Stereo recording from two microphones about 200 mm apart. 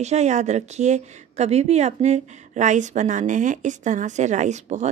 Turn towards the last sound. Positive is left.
turn(degrees=-35)  # may be behind; listen again after turning